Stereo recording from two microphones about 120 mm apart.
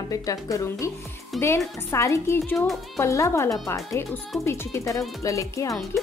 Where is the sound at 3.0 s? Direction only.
25° left (ahead or behind).